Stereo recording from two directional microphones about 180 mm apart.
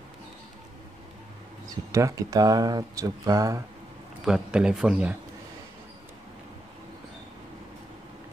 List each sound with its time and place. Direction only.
1.7 s speech: 15° right (ahead or behind)
4.2 s speech: 5° right (ahead or behind)